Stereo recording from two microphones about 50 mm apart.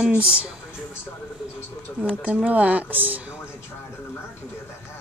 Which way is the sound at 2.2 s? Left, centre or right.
Right.